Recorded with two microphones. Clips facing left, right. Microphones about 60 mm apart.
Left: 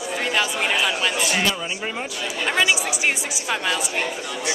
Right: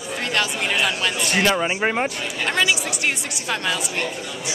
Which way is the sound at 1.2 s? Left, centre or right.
Right.